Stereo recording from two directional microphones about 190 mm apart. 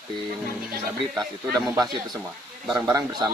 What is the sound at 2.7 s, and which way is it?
Speech, 20° right (ahead or behind).